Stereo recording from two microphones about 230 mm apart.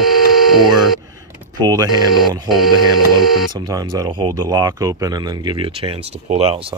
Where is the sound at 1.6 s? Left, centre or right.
Centre.